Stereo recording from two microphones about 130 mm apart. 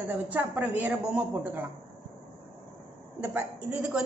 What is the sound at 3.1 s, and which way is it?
Speech, 10° right (ahead or behind).